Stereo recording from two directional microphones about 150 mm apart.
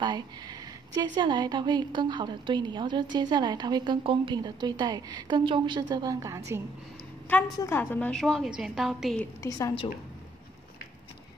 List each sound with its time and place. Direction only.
0.0 s speech: 30° right (ahead or behind)
7.5 s a woman's voice: 15° left (ahead or behind); by 9.2 s centre (ahead or behind)
9.2 s a woman's voice: 20° left (ahead or behind)